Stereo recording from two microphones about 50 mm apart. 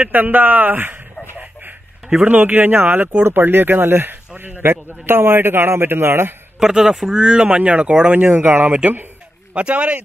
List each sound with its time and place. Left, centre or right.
0.0 s speech: right
1.2 s a sound: right
2.2 s a man's voice: right
6.6 s speech: centre
8.3 s speech: right
9.5 s speech: right